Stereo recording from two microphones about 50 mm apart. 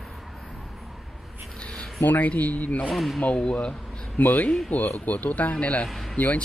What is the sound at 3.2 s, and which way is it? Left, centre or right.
Speech, left.